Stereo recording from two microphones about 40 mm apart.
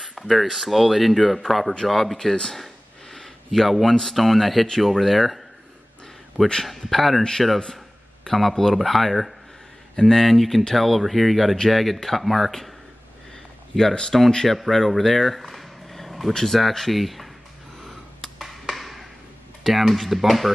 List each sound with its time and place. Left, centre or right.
0.2 s speech: centre
1.5 s speech: left
1.9 s speech: centre
3.1 s a sound: centre
3.9 s speech: centre
6.6 s speech: centre
13.7 s speech: centre
14.6 s a sound: centre
16.3 s speech: centre
18.4 s a sound: centre
19.6 s speech: centre